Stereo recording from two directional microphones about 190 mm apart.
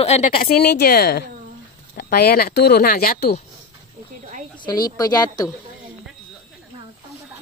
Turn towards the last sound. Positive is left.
turn(degrees=20)  # may be behind; listen again after turning